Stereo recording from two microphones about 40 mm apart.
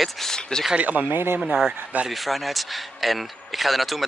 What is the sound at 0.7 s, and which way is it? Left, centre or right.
Speech, right.